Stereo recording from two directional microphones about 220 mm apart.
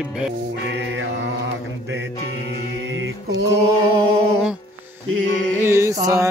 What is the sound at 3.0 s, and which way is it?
Music, 50° right (ahead or behind).